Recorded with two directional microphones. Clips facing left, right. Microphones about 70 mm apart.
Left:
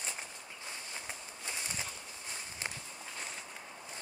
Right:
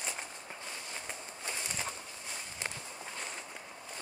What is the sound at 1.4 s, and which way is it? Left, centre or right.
Bird, right.